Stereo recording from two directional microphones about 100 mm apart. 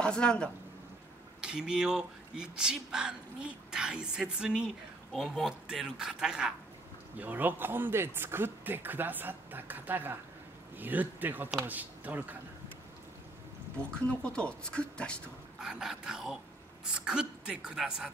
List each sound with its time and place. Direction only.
0.0 s speech: 10° left (ahead or behind)
1.4 s speech: 10° right (ahead or behind)
7.2 s speech: 20° right (ahead or behind)
14.0 s speech: 10° left (ahead or behind)
15.6 s speech: 5° right (ahead or behind)